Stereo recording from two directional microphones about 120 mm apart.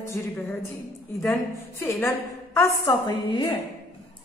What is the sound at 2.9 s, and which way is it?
Speech, 30° left (ahead or behind).